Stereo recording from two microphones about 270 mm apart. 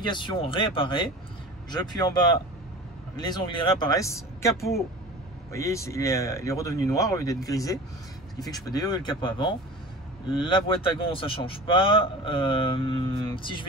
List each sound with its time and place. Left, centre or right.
0.0 s speech: centre
3.3 s speech: centre
4.6 s speech: left
5.5 s a man's voice: centre